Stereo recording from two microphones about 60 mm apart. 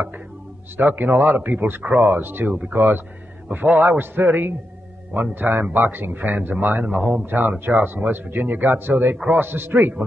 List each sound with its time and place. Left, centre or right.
0.7 s a man's voice: right